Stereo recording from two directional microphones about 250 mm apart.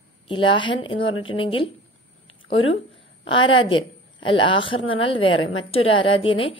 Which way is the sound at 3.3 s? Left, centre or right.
Centre.